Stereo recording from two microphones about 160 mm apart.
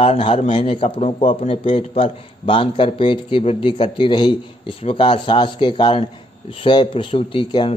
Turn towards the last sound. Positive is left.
turn(degrees=30)  # may be behind; listen again after turning